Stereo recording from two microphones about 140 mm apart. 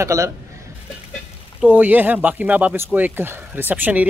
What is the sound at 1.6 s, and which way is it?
Speech, 10° right (ahead or behind).